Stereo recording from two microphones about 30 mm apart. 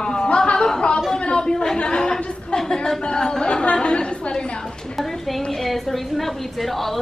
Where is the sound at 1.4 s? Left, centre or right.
Left.